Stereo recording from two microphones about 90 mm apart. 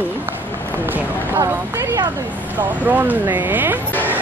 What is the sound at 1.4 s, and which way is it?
Speech, 35° right (ahead or behind).